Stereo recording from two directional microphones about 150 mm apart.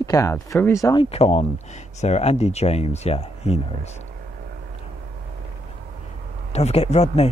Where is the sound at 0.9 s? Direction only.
40° left (ahead or behind).